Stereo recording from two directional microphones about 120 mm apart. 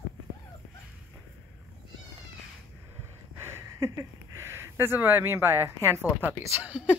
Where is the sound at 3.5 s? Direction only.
20° right (ahead or behind).